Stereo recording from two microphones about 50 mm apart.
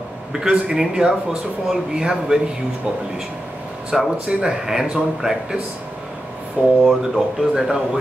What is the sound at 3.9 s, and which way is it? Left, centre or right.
Speech, centre.